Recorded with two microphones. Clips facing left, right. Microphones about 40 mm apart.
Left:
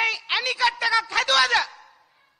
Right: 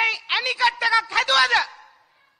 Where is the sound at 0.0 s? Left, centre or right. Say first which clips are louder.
Right 2 dB; centre.